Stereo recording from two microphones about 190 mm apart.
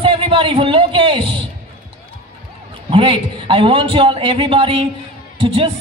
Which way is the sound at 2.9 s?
25° right (ahead or behind).